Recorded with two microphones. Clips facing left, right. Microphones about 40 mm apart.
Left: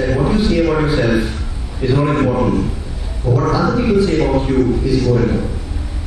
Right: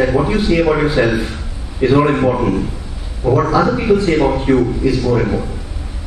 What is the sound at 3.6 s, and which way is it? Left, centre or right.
A man's voice, right.